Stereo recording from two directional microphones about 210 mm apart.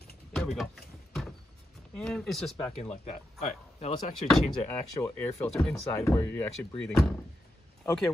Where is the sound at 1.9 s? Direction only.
5° left (ahead or behind).